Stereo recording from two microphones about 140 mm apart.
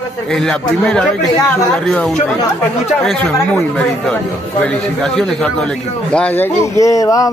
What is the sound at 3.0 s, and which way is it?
A man's voice, 5° left (ahead or behind).